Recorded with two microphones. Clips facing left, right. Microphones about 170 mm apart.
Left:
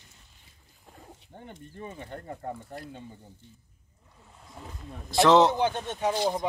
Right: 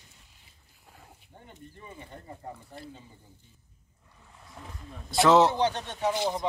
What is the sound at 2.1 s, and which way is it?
Speech, 65° left (ahead or behind).